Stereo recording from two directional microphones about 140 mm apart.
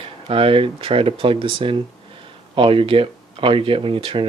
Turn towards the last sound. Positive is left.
turn(degrees=-40)  # may be behind; listen again after turning